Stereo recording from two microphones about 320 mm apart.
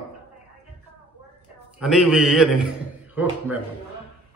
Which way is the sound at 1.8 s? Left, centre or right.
Centre.